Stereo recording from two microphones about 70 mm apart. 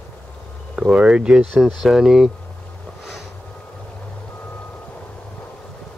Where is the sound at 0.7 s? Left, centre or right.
Centre.